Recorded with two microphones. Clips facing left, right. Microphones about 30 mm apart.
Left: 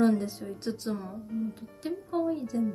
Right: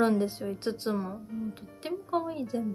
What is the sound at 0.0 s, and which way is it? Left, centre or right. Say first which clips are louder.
Speech: even; right.